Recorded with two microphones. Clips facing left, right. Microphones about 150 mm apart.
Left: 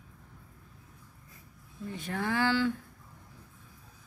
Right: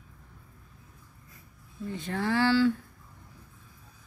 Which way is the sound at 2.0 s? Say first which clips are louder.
Right 3 dB; 15° left (ahead or behind).